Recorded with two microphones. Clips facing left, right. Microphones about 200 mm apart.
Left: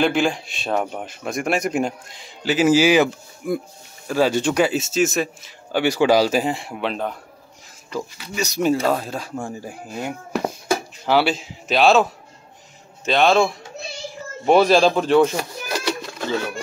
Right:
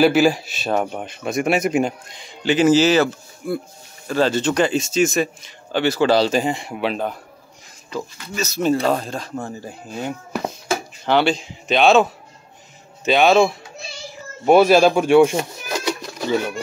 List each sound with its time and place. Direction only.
0.0 s speech: 5° right (ahead or behind)
7.9 s speech: 15° left (ahead or behind); by 15.9 s 15° right (ahead or behind)
16.1 s music: 15° right (ahead or behind)